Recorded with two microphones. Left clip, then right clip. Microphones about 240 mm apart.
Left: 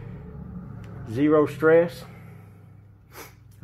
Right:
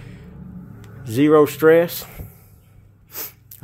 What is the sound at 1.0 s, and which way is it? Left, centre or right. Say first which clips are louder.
A man's voice: right 6 dB; right.